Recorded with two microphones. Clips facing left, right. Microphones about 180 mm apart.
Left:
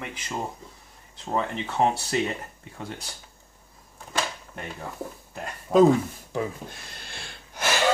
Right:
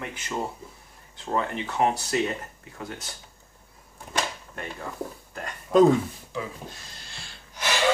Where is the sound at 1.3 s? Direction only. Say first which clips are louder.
Left 1 dB; 25° left (ahead or behind).